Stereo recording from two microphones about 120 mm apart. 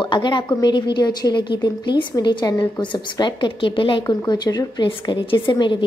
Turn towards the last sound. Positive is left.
turn(degrees=45)  # may be behind; listen again after turning